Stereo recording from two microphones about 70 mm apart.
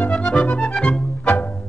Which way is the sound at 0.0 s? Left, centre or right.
Centre.